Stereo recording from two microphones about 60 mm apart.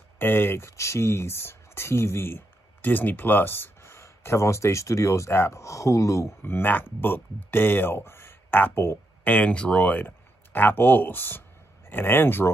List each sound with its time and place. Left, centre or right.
0.2 s speech: left
6.4 s speech: left
9.2 s speech: left